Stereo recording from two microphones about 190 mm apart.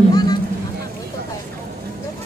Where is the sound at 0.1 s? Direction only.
20° left (ahead or behind).